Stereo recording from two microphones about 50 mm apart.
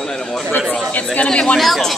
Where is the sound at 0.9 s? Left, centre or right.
Left.